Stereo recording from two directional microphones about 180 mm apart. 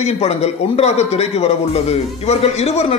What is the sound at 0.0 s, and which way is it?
Speech, 35° left (ahead or behind).